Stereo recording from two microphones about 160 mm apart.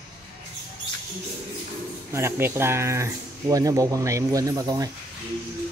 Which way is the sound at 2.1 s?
15° right (ahead or behind).